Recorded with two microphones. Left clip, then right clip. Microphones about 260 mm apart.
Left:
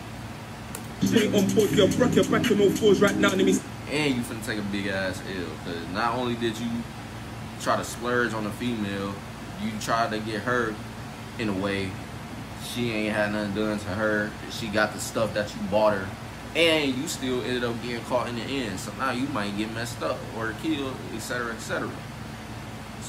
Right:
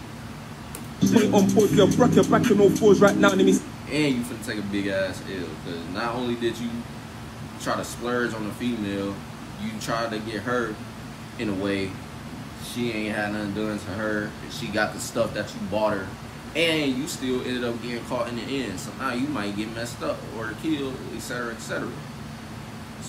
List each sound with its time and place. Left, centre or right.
1.0 s a man's voice: centre
3.9 s speech: centre
7.6 s speech: centre
12.8 s speech: centre